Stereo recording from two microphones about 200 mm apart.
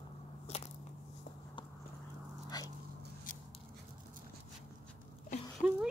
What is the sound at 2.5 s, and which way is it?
Dog, 20° left (ahead or behind).